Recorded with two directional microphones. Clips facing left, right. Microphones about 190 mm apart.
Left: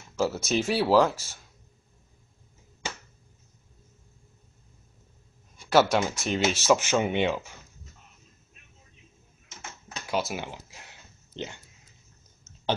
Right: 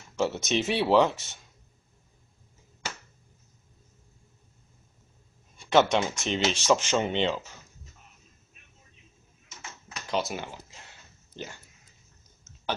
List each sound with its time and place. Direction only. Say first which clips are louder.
0.2 s speech: left 1 dB; centre (ahead or behind)
5.6 s speech: even; 5° left (ahead or behind)
10.0 s speech: even; 5° left (ahead or behind)
10.4 s a sound: left 2 dB; 15° left (ahead or behind)